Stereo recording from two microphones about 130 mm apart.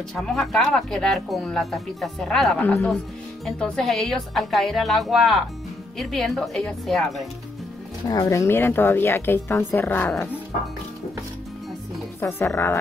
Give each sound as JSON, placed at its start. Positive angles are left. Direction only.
{"t": 0.1, "sound": "speech", "side_deg": 0}
{"t": 8.1, "sound": "speech", "side_deg": 25}
{"t": 12.2, "sound": "speech", "side_deg": 15}